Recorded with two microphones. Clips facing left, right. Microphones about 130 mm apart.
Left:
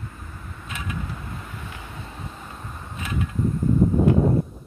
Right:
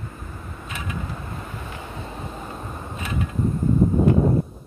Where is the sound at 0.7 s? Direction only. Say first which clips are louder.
Even; centre (ahead or behind).